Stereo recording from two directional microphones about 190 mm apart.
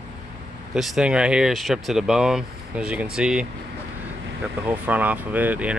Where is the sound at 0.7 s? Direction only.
5° right (ahead or behind).